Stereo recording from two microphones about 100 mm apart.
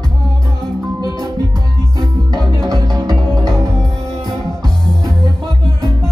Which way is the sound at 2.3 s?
45° right (ahead or behind).